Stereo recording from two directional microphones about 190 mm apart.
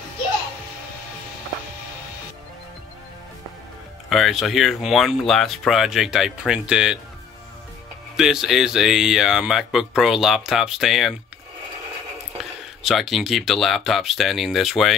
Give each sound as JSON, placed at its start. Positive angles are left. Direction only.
{"t": 4.1, "sound": "speech", "side_deg": 0}
{"t": 8.2, "sound": "speech", "side_deg": 0}
{"t": 12.4, "sound": "speech", "side_deg": 0}